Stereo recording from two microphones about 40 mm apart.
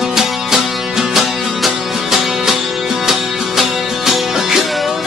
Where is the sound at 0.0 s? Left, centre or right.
Centre.